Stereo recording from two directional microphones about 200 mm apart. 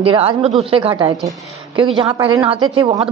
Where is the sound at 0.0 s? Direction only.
25° right (ahead or behind).